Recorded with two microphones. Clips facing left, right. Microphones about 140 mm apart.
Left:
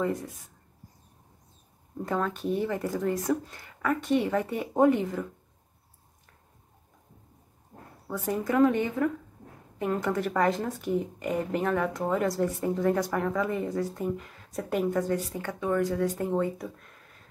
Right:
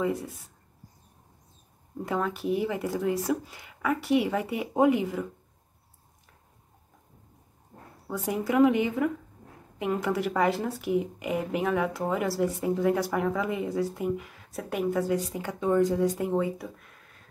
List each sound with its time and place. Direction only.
0.0 s a woman's voice: 10° right (ahead or behind)
2.0 s a woman's voice: 10° right (ahead or behind)
8.1 s a woman's voice: 10° right (ahead or behind)